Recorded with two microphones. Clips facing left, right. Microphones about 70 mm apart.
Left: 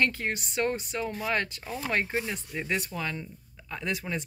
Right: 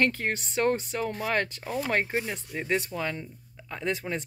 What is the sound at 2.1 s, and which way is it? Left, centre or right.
Speech, right.